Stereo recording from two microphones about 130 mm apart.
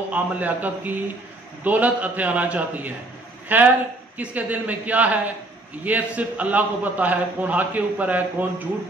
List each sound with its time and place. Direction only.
0.1 s a man's voice: 10° right (ahead or behind)